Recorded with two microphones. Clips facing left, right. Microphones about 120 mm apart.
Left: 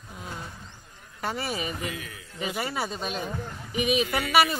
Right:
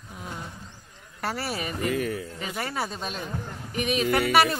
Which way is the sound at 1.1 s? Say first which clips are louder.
Even; centre (ahead or behind).